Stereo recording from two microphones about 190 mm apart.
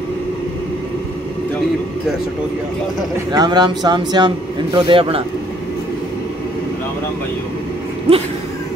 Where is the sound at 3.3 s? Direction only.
20° right (ahead or behind).